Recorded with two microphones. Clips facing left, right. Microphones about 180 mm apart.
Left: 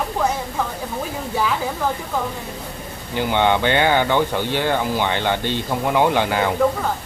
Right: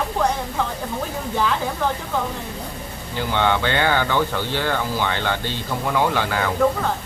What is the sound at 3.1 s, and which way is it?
Speech, 15° left (ahead or behind).